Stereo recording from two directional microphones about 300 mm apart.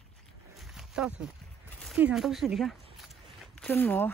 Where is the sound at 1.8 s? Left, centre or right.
Centre.